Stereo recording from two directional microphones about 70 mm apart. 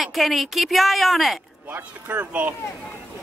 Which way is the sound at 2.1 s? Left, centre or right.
Right.